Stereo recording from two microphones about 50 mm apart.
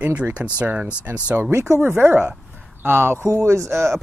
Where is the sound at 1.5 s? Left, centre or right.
Right.